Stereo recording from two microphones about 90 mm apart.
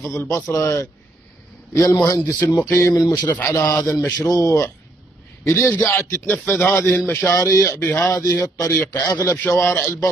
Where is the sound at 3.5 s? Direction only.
30° left (ahead or behind).